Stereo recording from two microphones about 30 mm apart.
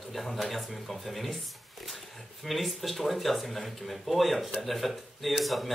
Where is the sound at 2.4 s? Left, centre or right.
Centre.